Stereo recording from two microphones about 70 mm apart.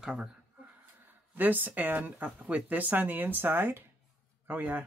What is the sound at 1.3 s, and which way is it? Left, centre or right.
Speech, right.